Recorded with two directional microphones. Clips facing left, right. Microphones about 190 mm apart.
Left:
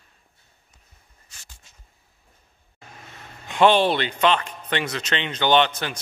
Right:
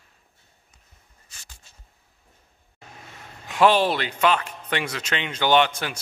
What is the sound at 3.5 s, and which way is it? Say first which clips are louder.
Speech: left 1 dB; 5° right (ahead or behind).